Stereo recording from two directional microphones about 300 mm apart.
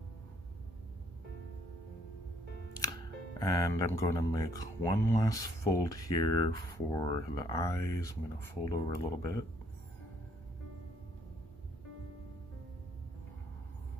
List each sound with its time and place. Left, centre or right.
3.3 s speech: centre